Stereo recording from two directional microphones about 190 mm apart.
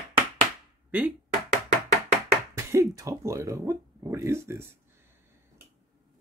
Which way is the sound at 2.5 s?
15° right (ahead or behind).